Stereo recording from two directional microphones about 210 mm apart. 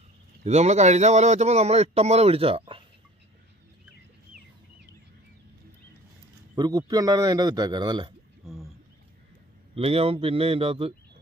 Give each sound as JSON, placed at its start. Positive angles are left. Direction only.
{"t": 0.4, "sound": "speech", "side_deg": -30}
{"t": 6.5, "sound": "a man's voice", "side_deg": -20}
{"t": 8.4, "sound": "speech", "side_deg": 0}
{"t": 9.8, "sound": "a man's voice", "side_deg": -25}